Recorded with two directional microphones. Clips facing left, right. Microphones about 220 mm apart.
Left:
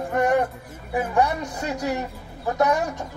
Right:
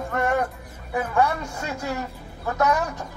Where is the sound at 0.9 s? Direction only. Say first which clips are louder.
Left 1 dB; 15° left (ahead or behind).